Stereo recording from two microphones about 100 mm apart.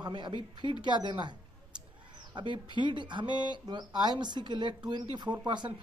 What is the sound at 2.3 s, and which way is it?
Speech, 50° right (ahead or behind).